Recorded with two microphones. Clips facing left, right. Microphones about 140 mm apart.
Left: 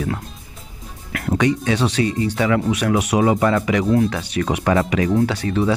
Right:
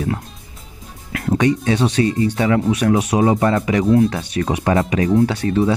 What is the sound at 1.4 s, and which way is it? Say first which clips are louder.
Speech: right 2 dB; 35° right (ahead or behind).